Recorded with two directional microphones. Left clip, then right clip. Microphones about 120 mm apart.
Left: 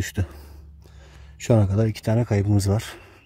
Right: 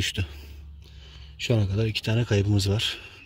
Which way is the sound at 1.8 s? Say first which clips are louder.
Left 3 dB; 20° left (ahead or behind).